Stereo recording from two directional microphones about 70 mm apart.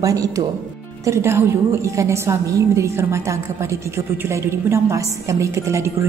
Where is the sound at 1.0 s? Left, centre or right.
Right.